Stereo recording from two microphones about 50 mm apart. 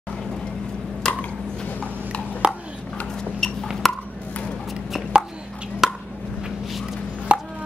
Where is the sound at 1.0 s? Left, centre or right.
Centre.